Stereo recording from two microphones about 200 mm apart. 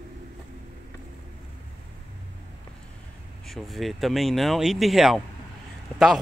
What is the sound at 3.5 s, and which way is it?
Speech, centre (ahead or behind).